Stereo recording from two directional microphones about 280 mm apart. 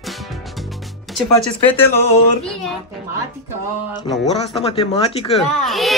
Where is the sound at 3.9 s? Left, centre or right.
Centre.